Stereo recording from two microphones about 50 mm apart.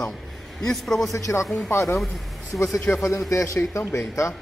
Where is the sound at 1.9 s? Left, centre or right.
Centre.